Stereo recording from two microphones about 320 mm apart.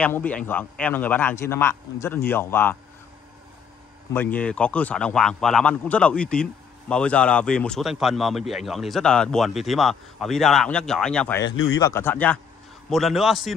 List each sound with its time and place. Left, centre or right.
0.0 s a man's voice: centre
4.1 s a man's voice: centre
11.5 s speech: left
11.8 s a man's voice: centre